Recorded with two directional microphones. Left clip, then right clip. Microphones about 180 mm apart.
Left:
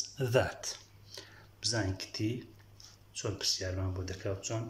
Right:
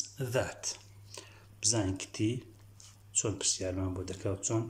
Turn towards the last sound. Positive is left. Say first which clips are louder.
# right 3 dB
turn(degrees=-20)  # may be behind; listen again after turning